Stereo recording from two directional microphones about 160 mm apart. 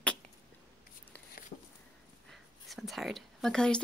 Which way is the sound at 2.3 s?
Centre (ahead or behind).